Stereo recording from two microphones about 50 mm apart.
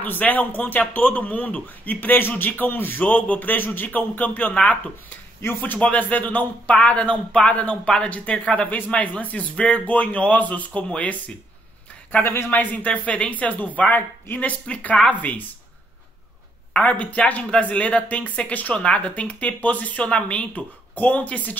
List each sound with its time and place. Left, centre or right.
0.0 s speech: left
3.0 s speech: left
5.4 s speech: left
5.8 s speech: left
12.2 s speech: left
12.5 s speech: left
16.8 s speech: left